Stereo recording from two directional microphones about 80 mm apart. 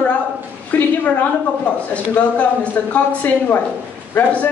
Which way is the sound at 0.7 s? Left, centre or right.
Left.